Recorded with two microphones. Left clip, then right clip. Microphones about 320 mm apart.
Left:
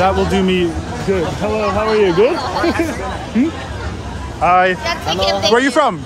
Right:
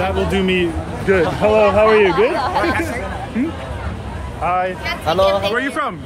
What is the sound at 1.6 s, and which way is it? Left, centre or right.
Speech, right.